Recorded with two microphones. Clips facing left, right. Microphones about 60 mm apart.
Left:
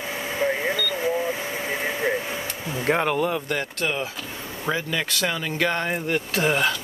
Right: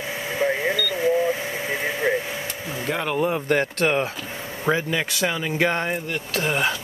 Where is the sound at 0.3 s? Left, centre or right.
Centre.